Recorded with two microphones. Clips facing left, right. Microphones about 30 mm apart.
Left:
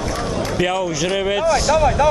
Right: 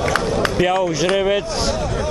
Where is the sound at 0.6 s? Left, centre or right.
Centre.